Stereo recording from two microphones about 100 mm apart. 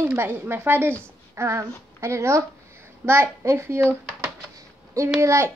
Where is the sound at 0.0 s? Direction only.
20° right (ahead or behind).